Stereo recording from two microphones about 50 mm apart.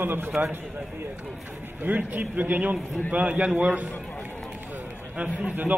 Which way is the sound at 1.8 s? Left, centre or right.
Right.